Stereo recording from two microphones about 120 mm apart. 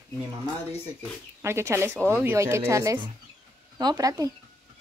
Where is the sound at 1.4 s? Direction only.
25° right (ahead or behind).